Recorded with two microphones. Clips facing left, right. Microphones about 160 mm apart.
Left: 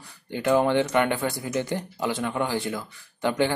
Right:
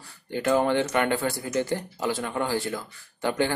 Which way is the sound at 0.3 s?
20° left (ahead or behind).